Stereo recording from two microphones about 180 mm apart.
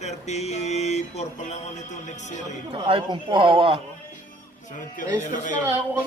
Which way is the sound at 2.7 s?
25° right (ahead or behind).